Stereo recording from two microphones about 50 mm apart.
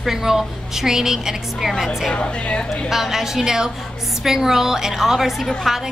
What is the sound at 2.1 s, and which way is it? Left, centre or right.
Speech, left.